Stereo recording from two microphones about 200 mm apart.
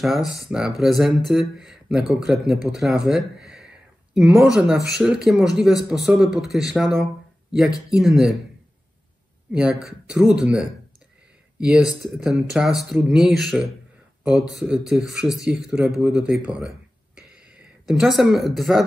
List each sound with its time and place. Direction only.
0.0 s speech: centre (ahead or behind)
3.1 s a sound: 5° right (ahead or behind)
4.6 s speech: 5° right (ahead or behind)
9.5 s speech: 5° right (ahead or behind)